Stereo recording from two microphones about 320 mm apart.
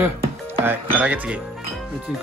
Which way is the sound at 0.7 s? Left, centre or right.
Centre.